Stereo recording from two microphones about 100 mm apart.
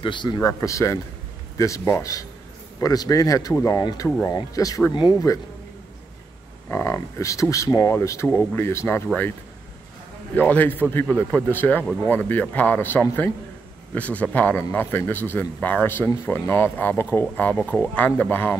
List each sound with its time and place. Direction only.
0.0 s a man's voice: 50° left (ahead or behind)
0.4 s speech: 30° left (ahead or behind)
6.7 s speech: 30° left (ahead or behind)
10.3 s speech: 15° left (ahead or behind)